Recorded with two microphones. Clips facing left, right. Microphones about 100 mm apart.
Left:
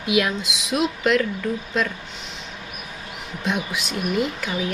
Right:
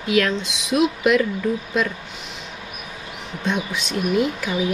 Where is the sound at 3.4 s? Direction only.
5° left (ahead or behind).